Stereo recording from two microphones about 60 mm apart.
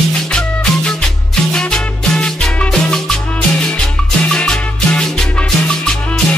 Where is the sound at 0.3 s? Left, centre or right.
Centre.